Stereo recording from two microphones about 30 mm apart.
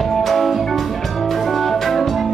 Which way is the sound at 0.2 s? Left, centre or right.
Centre.